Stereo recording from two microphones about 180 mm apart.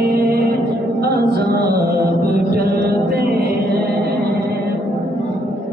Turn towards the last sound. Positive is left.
turn(degrees=-60)  # may be behind; listen again after turning